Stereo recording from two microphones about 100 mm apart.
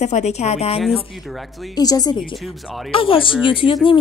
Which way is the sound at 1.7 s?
40° left (ahead or behind).